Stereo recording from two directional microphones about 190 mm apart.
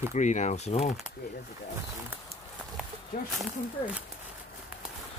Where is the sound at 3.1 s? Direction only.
50° left (ahead or behind).